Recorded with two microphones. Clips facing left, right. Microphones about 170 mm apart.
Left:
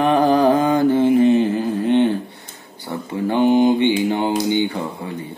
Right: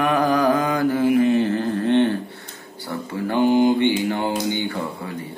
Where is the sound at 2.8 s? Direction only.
20° left (ahead or behind).